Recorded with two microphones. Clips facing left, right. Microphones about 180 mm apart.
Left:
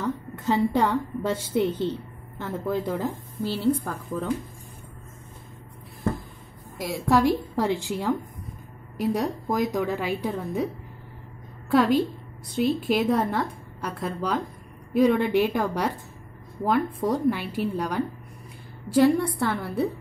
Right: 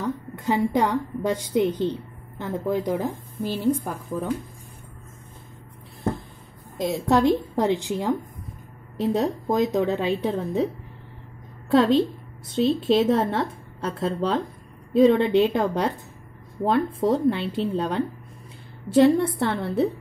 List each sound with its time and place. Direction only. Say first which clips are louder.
0.0 s a woman's voice: right 1 dB; 15° right (ahead or behind)
6.8 s a woman's voice: right 2 dB; 25° right (ahead or behind)
11.7 s a woman's voice: right 2 dB; 25° right (ahead or behind)